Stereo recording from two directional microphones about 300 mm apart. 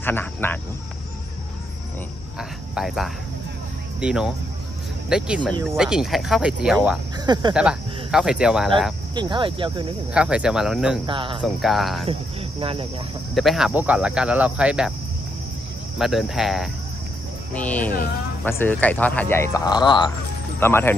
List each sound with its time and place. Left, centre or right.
0.0 s speech: centre
2.3 s cricket: centre
4.0 s speech: centre
7.2 s speech: centre
7.5 s speech: centre
9.1 s speech: centre
10.1 s speech: centre
11.1 s speech: centre
11.4 s speech: centre
12.1 s speech: centre
13.3 s speech: centre
16.0 s speech: centre